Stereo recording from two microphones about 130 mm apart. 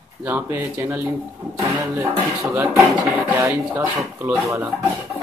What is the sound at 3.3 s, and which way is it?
Speech, 15° right (ahead or behind).